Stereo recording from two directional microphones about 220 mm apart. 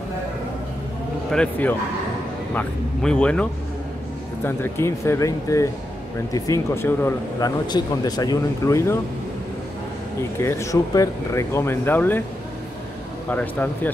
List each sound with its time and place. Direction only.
1.3 s speech: 5° left (ahead or behind)
10.4 s speech: 15° left (ahead or behind)
13.3 s speech: 10° left (ahead or behind)